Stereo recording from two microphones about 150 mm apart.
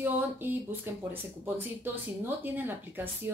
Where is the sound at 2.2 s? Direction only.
15° right (ahead or behind).